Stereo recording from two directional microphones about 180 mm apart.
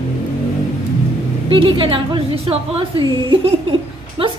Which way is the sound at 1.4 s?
30° right (ahead or behind).